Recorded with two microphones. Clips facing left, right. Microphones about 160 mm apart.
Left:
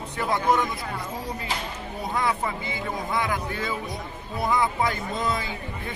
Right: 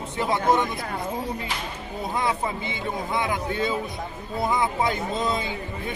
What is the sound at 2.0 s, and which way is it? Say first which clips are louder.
Speech: even; 20° right (ahead or behind).